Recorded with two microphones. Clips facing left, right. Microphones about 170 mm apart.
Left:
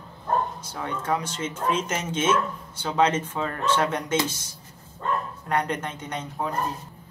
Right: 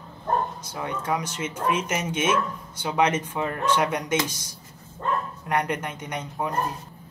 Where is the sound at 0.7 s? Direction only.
10° right (ahead or behind).